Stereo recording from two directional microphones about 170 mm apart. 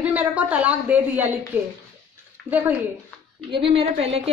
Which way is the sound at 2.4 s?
10° right (ahead or behind).